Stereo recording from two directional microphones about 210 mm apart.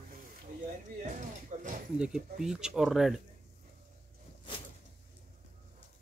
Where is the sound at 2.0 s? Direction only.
5° right (ahead or behind).